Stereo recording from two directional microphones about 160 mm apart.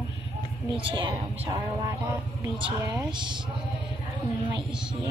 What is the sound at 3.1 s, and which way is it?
Speech, 30° right (ahead or behind).